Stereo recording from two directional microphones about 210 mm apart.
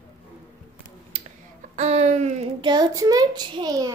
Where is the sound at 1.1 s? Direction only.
30° right (ahead or behind).